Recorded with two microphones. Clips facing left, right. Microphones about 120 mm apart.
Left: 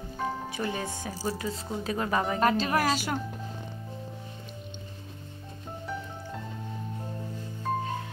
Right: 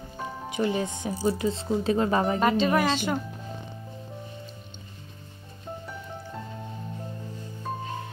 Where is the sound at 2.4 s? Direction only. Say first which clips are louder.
Right 1 dB; centre (ahead or behind).